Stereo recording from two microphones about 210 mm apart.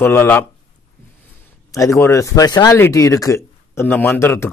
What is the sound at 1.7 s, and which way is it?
Speech, 15° left (ahead or behind).